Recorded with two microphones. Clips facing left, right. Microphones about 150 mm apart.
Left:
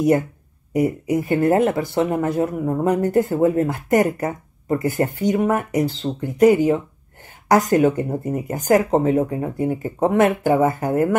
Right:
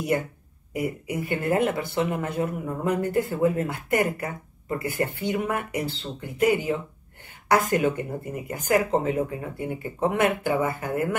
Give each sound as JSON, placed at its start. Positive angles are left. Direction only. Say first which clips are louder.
{"t": 1.0, "sound": "speech", "louder": "left 8 dB", "side_deg": 40}